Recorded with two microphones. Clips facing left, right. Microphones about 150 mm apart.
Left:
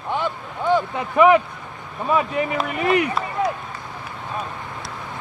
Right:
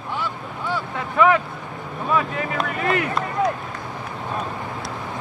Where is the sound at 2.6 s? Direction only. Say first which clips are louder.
Left 3 dB; 15° left (ahead or behind).